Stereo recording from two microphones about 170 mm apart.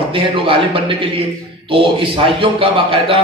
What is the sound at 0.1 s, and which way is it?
A man's voice, 30° right (ahead or behind).